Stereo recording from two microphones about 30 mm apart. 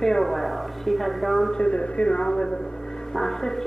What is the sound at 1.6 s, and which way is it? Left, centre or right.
Speech, left.